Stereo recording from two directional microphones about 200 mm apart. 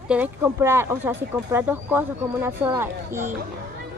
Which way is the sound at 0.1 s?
10° right (ahead or behind).